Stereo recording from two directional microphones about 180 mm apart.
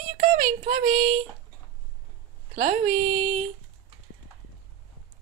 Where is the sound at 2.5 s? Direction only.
40° right (ahead or behind).